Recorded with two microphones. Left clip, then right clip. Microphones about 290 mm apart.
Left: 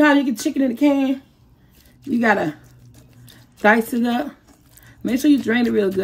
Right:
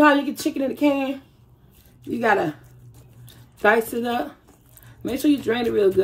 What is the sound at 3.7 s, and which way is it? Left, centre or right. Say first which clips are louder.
Speech: left 1 dB; left.